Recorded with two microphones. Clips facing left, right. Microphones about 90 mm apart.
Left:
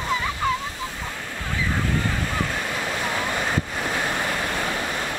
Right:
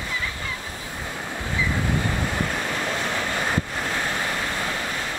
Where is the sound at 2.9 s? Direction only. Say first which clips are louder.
Even; 10° left (ahead or behind).